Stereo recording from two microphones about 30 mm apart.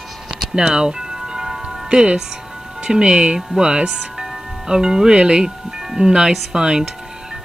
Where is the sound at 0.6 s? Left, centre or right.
Right.